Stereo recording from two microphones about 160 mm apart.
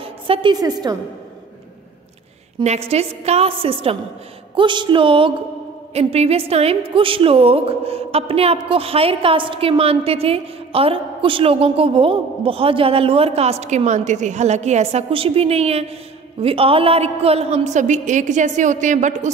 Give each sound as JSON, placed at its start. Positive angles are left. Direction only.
{"t": 0.0, "sound": "a woman's voice", "side_deg": -35}
{"t": 2.6, "sound": "a woman's voice", "side_deg": -40}